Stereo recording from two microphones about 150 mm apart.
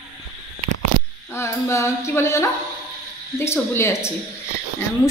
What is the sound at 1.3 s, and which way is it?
Music, 20° left (ahead or behind).